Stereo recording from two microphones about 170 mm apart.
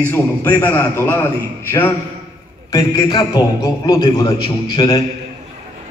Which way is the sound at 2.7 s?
25° left (ahead or behind).